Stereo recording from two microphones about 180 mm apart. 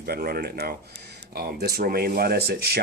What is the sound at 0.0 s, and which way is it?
Speech, 60° right (ahead or behind).